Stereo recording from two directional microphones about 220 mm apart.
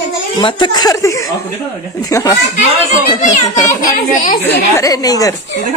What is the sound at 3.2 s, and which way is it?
A child's voice, 35° left (ahead or behind).